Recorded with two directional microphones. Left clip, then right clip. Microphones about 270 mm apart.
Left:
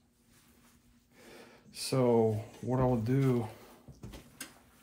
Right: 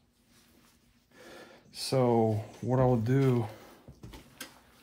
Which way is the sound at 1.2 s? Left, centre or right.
Right.